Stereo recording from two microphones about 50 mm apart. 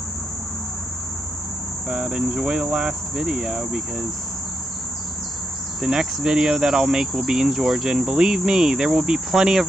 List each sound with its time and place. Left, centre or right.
1.9 s cricket: centre
5.8 s cricket: centre